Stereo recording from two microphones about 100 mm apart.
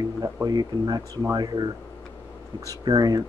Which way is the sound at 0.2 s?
40° right (ahead or behind).